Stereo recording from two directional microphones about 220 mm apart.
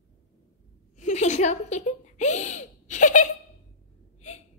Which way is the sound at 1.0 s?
35° left (ahead or behind).